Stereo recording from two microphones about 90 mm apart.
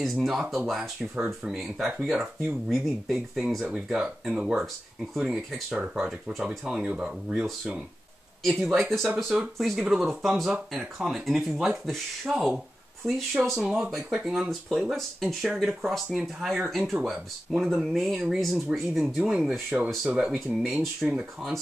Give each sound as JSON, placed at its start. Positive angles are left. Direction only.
{"t": 0.0, "sound": "speech", "side_deg": 0}
{"t": 3.9, "sound": "speech", "side_deg": -10}
{"t": 8.5, "sound": "speech", "side_deg": 0}